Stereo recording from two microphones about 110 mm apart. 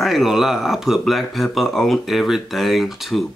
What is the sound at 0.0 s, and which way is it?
Speech, centre (ahead or behind).